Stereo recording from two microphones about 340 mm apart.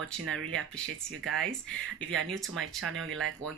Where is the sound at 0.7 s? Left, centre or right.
Centre.